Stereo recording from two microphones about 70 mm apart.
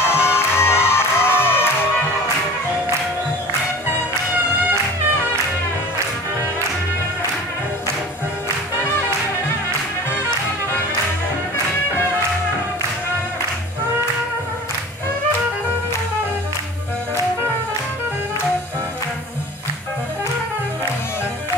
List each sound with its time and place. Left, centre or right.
0.0 s music: left